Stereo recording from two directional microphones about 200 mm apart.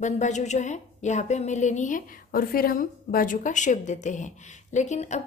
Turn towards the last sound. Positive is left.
turn(degrees=35)  # may be behind; listen again after turning